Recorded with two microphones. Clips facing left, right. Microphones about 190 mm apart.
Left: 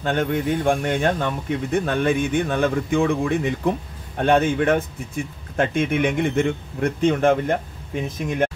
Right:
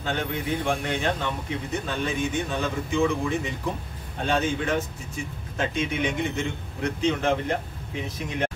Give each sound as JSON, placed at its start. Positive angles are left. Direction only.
{"t": 0.0, "sound": "a man's voice", "side_deg": 50}